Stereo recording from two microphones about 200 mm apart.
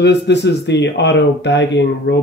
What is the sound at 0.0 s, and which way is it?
Speech, 60° left (ahead or behind).